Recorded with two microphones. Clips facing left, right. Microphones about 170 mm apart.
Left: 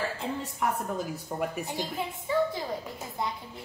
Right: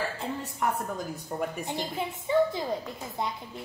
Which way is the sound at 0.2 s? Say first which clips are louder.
Even; centre (ahead or behind).